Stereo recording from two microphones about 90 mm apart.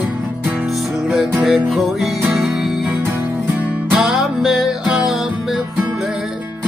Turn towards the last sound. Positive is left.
turn(degrees=-5)  # may be behind; listen again after turning